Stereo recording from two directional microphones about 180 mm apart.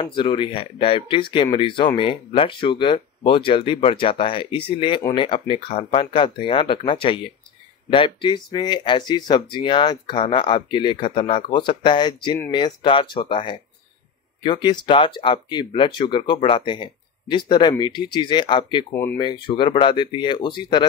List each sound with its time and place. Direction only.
0.0 s speech: 25° left (ahead or behind)
18.9 s speech: 15° left (ahead or behind)
19.1 s speech: 25° left (ahead or behind)